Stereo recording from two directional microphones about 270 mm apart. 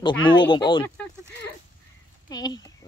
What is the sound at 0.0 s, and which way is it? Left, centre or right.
Speech, centre.